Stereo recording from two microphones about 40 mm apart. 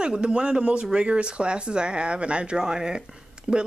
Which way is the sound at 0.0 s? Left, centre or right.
Right.